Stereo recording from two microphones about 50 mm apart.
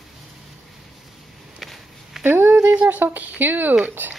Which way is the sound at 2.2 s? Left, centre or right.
Right.